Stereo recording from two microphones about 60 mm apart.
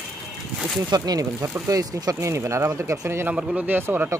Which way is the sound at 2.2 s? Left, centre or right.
Right.